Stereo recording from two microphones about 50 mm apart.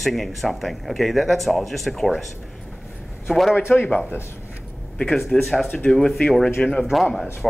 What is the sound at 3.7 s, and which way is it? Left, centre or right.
Speech, left.